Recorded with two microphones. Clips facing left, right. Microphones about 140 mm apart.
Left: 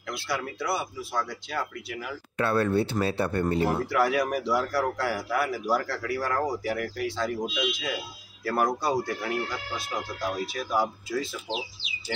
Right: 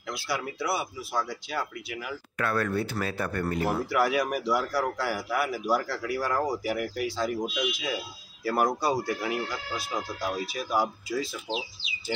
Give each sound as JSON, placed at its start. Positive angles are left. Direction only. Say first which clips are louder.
{"t": 0.1, "sound": "a man's voice", "louder": "even", "side_deg": -5}
{"t": 2.3, "sound": "speech", "louder": "left 4 dB", "side_deg": 30}
{"t": 3.6, "sound": "a man's voice", "louder": "right 2 dB", "side_deg": -5}
{"t": 8.5, "sound": "a man's voice", "louder": "even", "side_deg": 0}